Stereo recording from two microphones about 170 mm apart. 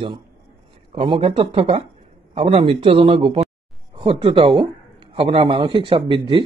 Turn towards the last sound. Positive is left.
turn(degrees=-30)  # may be behind; listen again after turning